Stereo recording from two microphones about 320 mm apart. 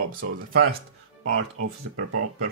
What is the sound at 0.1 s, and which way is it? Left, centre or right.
Speech, right.